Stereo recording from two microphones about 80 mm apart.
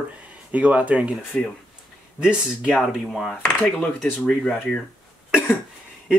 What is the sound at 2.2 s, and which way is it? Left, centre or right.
Speech, centre.